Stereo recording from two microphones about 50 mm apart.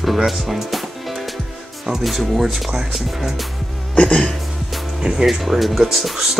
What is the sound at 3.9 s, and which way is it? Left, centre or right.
Music, centre.